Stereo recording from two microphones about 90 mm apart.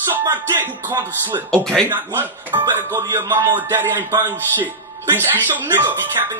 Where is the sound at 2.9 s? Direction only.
30° right (ahead or behind).